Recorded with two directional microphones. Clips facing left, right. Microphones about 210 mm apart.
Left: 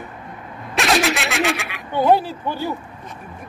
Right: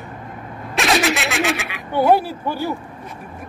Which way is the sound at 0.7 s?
Centre (ahead or behind).